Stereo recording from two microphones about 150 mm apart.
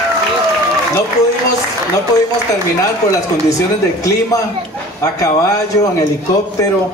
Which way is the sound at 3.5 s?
20° left (ahead or behind).